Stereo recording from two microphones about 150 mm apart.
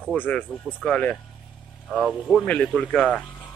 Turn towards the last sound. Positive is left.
turn(degrees=0)  # may be behind; listen again after turning